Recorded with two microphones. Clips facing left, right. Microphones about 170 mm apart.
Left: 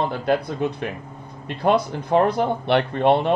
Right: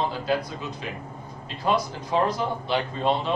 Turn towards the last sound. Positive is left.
turn(degrees=65)  # may be behind; listen again after turning